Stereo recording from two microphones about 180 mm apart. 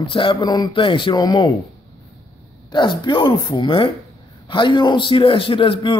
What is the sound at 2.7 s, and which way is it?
A man's voice, 25° left (ahead or behind).